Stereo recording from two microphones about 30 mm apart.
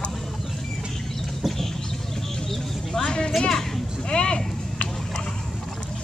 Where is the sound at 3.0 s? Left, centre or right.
Left.